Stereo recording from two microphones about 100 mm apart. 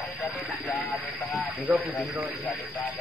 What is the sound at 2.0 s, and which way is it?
Speech, centre (ahead or behind).